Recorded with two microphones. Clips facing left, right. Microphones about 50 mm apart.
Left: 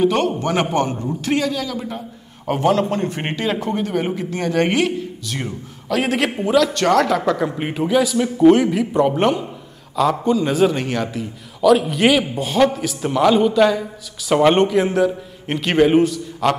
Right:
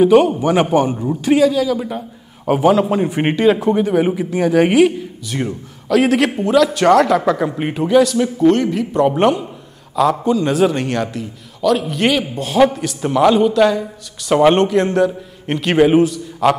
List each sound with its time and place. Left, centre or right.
0.0 s a man's voice: centre